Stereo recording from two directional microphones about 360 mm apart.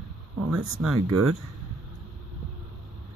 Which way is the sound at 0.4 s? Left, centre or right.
Right.